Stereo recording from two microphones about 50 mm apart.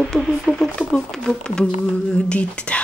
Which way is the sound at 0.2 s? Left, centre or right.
Centre.